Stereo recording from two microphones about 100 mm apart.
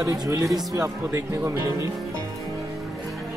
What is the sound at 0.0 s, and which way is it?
Speech, 35° right (ahead or behind).